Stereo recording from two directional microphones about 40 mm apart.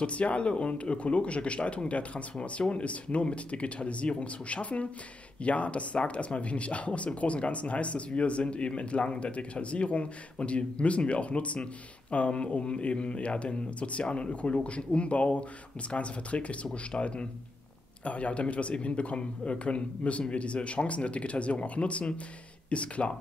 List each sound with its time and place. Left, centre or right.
0.0 s speech: left